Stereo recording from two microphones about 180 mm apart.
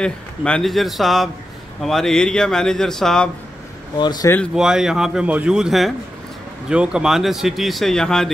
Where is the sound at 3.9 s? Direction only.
25° left (ahead or behind).